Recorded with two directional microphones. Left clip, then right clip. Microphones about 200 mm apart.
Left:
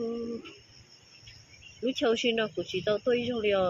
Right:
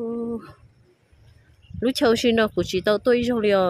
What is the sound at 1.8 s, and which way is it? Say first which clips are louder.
Speech: right 7 dB; 60° right (ahead or behind).